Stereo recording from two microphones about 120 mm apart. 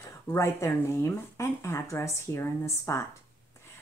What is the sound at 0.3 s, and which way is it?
Speech, 20° left (ahead or behind).